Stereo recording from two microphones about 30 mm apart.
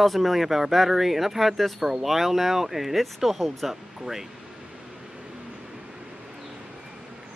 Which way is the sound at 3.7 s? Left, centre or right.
Centre.